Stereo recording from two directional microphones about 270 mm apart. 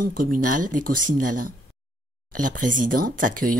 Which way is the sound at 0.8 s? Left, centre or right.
Right.